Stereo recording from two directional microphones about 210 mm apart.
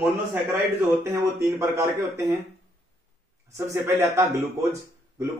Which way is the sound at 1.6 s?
15° right (ahead or behind).